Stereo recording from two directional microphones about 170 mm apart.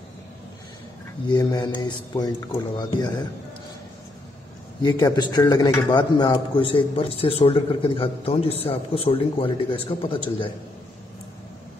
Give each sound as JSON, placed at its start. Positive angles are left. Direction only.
{"t": 1.3, "sound": "a man's voice", "side_deg": 25}
{"t": 4.8, "sound": "a man's voice", "side_deg": 20}